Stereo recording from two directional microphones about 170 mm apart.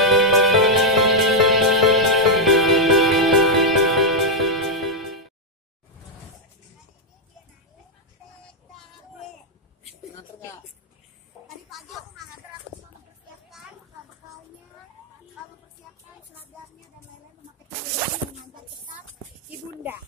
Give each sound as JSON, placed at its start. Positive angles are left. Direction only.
{"t": 0.0, "sound": "music", "side_deg": 0}